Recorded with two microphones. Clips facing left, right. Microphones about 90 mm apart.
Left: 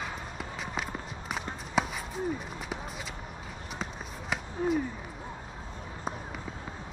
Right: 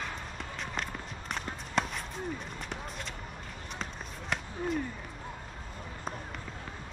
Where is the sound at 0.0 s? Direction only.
5° left (ahead or behind).